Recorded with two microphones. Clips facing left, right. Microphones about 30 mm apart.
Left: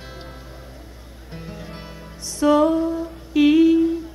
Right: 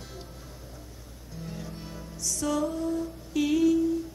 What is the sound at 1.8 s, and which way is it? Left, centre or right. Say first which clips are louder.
Music: even; left.